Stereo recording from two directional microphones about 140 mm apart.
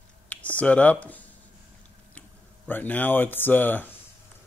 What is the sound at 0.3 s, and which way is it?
Speech, 10° left (ahead or behind).